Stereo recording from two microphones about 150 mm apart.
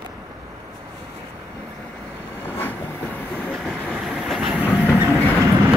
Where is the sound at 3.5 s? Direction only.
Centre (ahead or behind).